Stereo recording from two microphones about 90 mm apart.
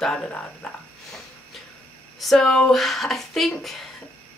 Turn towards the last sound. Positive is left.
turn(degrees=0)  # may be behind; listen again after turning